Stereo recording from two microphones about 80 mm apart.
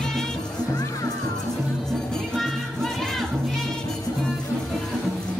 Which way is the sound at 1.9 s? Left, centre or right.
Centre.